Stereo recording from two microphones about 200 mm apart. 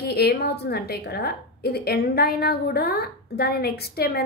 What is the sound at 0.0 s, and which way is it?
A woman's voice, 50° left (ahead or behind).